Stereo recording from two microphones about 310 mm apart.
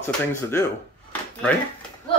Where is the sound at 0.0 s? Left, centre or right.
Centre.